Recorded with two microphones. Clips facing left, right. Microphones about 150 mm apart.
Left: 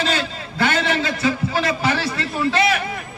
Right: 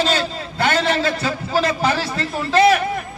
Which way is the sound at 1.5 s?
40° right (ahead or behind).